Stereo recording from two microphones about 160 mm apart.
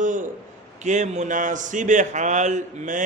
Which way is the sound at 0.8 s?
45° right (ahead or behind).